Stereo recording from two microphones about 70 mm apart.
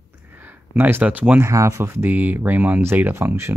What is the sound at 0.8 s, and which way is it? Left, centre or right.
Speech, right.